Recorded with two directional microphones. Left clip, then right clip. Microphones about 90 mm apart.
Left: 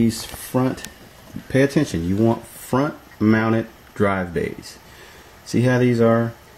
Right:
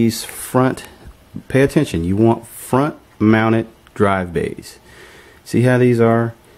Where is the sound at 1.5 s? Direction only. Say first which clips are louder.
Right 3 dB; 20° right (ahead or behind).